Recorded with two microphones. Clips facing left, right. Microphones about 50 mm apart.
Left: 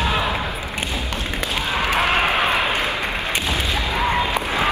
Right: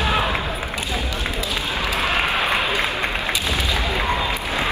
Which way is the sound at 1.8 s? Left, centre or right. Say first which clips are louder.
Left 3 dB; left.